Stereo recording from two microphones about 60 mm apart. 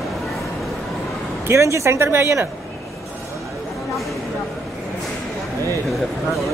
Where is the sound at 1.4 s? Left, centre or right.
Right.